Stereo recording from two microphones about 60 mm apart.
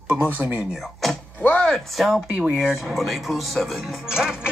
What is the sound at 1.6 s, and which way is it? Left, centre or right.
Speech, centre.